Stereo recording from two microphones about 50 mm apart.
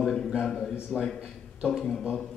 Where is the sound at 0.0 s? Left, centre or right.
Centre.